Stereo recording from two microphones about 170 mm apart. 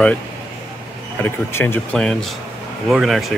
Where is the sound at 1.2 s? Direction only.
15° left (ahead or behind).